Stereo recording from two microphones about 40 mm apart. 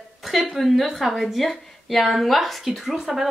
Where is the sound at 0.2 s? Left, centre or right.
Centre.